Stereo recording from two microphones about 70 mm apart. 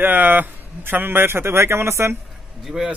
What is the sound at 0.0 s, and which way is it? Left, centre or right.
A man's voice, right.